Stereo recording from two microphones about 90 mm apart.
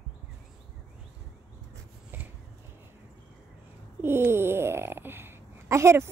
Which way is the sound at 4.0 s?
25° right (ahead or behind).